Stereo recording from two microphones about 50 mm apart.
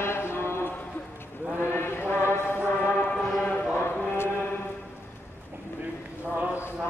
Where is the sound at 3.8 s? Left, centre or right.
Left.